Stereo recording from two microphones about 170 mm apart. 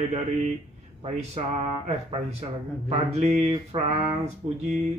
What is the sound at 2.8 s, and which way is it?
Speech, 40° right (ahead or behind).